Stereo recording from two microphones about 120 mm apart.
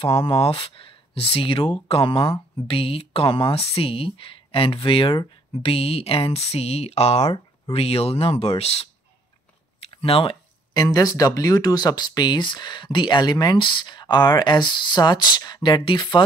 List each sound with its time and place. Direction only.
0.0 s speech: 50° left (ahead or behind)
10.0 s speech: 55° left (ahead or behind)
10.7 s speech: 30° left (ahead or behind)